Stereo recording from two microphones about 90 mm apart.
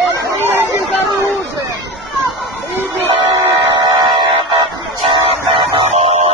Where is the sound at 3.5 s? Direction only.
60° right (ahead or behind).